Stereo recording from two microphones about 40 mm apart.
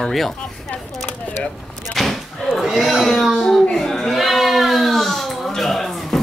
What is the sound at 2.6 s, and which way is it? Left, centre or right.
Speech, centre.